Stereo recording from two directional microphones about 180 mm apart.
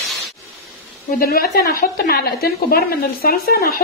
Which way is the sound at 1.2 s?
55° left (ahead or behind).